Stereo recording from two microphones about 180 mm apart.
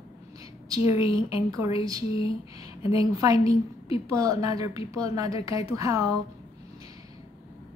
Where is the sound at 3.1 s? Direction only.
20° right (ahead or behind).